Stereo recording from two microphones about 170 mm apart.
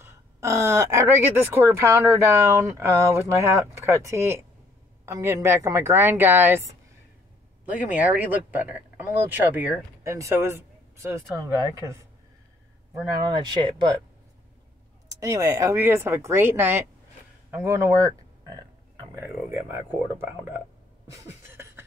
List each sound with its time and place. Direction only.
0.0 s speech: 15° right (ahead or behind)
7.9 s speech: 10° right (ahead or behind)
13.3 s speech: 25° right (ahead or behind)
15.0 s speech: 20° right (ahead or behind)